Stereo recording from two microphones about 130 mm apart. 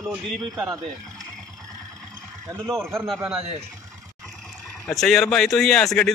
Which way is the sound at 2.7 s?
20° right (ahead or behind).